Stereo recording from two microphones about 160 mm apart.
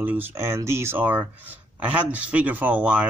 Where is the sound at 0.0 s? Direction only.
10° right (ahead or behind).